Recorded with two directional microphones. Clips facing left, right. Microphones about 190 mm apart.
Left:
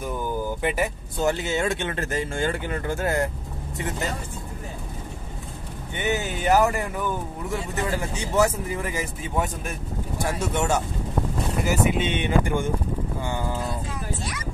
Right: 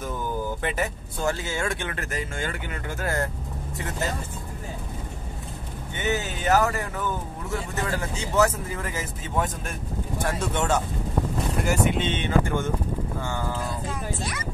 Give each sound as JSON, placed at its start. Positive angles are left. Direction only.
{"t": 0.0, "sound": "speech", "side_deg": 15}
{"t": 5.9, "sound": "speech", "side_deg": 15}